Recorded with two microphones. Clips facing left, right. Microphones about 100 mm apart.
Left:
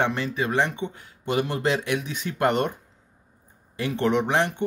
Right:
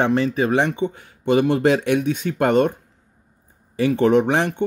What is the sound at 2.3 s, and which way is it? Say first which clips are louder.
Speech: right 7 dB; 90° right.